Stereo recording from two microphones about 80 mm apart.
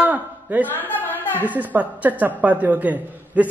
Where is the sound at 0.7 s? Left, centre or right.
Left.